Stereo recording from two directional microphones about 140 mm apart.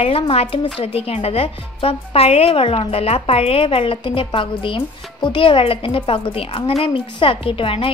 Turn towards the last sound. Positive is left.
turn(degrees=40)  # may be behind; listen again after turning